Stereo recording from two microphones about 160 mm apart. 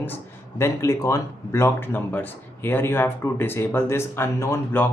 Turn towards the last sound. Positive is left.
turn(degrees=15)  # may be behind; listen again after turning